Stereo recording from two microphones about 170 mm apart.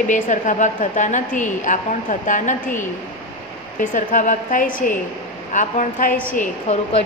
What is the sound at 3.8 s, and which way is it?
A woman's voice, 50° left (ahead or behind).